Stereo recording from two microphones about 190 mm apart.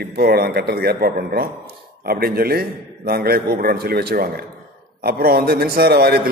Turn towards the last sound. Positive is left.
turn(degrees=-55)  # may be behind; listen again after turning